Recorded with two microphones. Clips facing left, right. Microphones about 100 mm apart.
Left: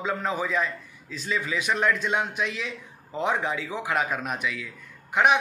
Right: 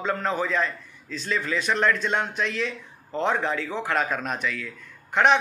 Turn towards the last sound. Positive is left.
turn(degrees=10)  # may be behind; listen again after turning